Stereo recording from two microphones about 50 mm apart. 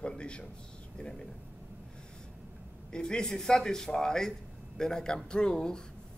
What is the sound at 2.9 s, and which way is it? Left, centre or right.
Speech, centre.